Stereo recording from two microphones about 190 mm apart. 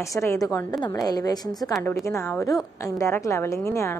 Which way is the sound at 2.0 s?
15° left (ahead or behind).